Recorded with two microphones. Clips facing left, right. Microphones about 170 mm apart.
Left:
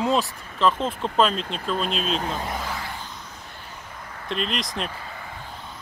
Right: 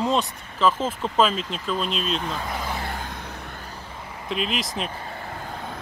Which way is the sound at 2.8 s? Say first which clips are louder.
Right 4 dB; 55° right (ahead or behind).